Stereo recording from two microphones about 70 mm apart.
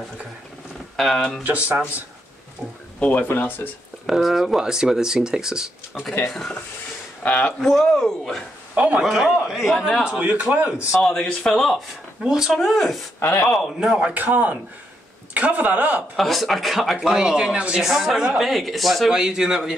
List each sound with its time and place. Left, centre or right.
0.9 s speech: centre
1.4 s a man's voice: right
3.0 s speech: left
4.0 s speech: centre
6.2 s speech: centre
7.2 s speech: centre
7.6 s speech: centre
8.7 s a man's voice: centre
9.0 s speech: centre
10.0 s speech: centre
11.0 s speech: centre
13.2 s speech: left
13.9 s a man's voice: right
16.2 s speech: centre